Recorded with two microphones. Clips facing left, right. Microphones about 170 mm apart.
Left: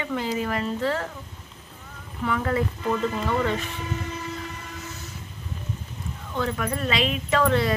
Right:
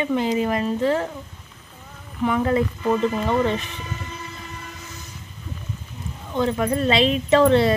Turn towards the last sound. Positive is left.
turn(degrees=-30)  # may be behind; listen again after turning